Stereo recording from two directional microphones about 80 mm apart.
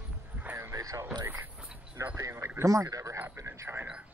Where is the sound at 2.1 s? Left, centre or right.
Right.